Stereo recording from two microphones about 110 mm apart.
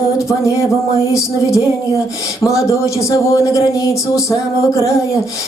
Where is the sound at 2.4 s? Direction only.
30° left (ahead or behind).